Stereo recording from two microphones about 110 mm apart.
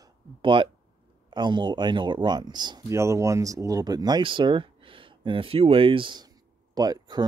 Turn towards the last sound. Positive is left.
turn(degrees=-40)  # may be behind; listen again after turning